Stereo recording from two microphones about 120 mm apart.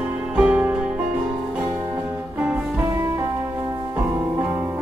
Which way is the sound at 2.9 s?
25° right (ahead or behind).